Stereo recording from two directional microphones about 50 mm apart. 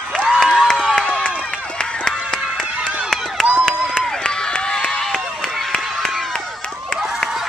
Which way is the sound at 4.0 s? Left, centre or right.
Centre.